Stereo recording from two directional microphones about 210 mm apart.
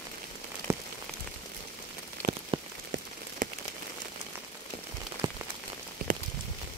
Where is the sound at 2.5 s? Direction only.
25° right (ahead or behind).